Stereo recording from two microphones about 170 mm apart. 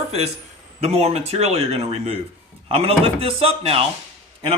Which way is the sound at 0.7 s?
35° right (ahead or behind).